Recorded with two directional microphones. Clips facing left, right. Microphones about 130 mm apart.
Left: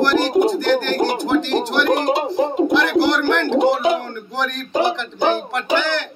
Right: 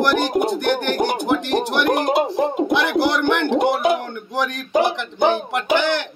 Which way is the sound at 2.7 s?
15° right (ahead or behind).